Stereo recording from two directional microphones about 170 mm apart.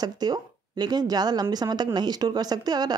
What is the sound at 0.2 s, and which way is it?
Speech, 25° right (ahead or behind).